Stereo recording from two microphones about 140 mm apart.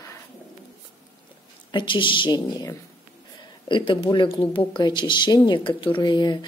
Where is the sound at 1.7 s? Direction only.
35° left (ahead or behind).